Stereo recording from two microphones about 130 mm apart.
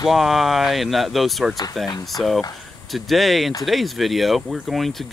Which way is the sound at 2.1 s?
30° left (ahead or behind).